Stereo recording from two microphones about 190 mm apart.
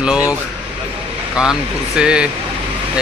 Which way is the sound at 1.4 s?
5° right (ahead or behind).